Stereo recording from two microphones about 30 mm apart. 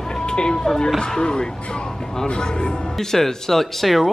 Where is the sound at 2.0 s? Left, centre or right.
Centre.